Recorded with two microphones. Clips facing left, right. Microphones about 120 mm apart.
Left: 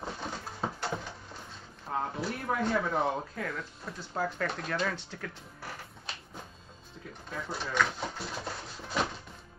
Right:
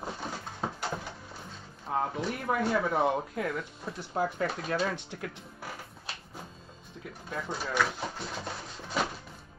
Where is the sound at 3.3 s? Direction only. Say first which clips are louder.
Right 4 dB; 25° right (ahead or behind).